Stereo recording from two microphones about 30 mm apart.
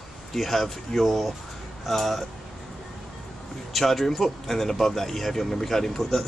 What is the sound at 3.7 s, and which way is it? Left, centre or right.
A man's voice, centre.